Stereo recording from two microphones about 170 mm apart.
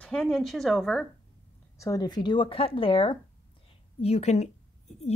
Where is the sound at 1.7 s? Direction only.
20° left (ahead or behind); by 5.1 s 40° left (ahead or behind).